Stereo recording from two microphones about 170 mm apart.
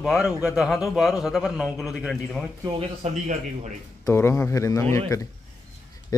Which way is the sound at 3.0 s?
40° right (ahead or behind).